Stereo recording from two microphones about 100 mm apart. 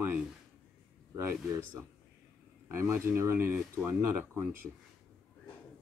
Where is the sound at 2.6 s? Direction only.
25° right (ahead or behind).